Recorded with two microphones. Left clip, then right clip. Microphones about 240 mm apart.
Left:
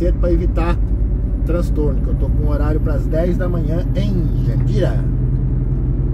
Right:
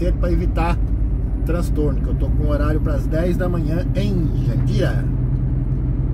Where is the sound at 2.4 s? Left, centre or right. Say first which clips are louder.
Even; right.